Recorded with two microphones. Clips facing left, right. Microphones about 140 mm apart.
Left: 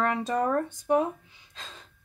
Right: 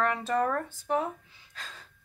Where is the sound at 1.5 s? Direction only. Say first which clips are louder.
Even; 20° left (ahead or behind).